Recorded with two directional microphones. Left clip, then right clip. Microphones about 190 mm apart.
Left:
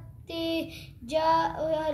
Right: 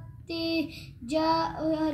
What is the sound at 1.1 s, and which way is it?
Child singing, 10° left (ahead or behind).